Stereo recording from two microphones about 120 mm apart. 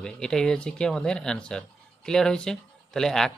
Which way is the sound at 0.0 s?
5° left (ahead or behind).